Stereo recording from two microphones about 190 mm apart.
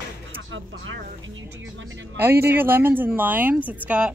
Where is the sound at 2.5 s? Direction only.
10° right (ahead or behind).